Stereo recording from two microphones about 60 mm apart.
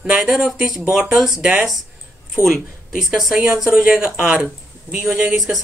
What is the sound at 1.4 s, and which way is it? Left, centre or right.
Speech, centre.